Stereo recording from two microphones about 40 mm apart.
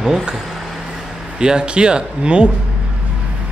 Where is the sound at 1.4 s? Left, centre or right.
Right.